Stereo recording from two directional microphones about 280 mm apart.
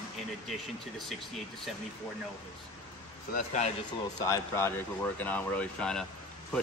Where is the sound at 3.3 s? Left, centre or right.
Left.